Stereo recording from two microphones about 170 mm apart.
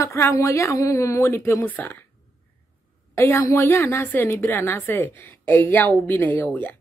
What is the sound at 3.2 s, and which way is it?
A woman's voice, 15° left (ahead or behind).